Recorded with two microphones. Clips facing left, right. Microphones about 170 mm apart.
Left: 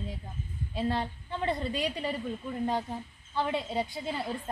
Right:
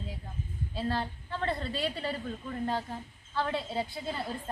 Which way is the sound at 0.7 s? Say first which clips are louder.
Left 2 dB; 20° left (ahead or behind).